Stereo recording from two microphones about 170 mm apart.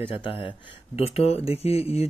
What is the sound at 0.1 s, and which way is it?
Speech, 30° left (ahead or behind).